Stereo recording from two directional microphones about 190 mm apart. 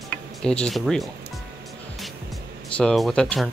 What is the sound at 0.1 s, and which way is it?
Speech, 5° left (ahead or behind).